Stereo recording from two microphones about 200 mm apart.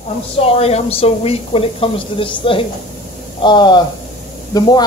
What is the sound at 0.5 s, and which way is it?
Speech, 30° left (ahead or behind).